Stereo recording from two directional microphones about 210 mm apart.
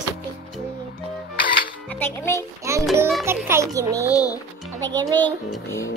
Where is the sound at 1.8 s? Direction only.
10° left (ahead or behind).